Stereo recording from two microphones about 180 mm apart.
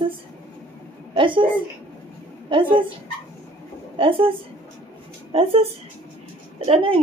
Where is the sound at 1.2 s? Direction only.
25° right (ahead or behind).